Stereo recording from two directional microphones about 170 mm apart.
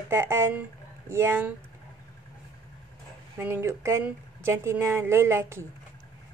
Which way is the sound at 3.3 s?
15° right (ahead or behind).